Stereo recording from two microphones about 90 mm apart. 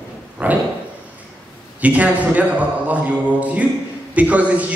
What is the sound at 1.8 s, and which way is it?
A man's voice, 15° right (ahead or behind).